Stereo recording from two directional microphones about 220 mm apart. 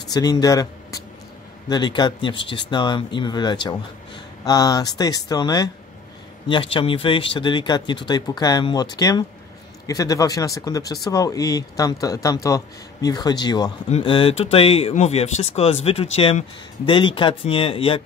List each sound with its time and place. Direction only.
0.1 s speech: 15° left (ahead or behind)